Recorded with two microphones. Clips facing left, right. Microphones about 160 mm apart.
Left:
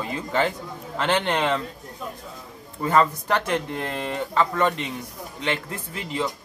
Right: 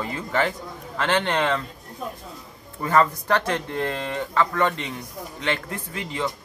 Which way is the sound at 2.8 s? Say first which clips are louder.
Even; 15° left (ahead or behind).